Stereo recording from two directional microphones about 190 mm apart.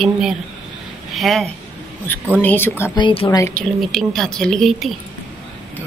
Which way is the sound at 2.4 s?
10° left (ahead or behind).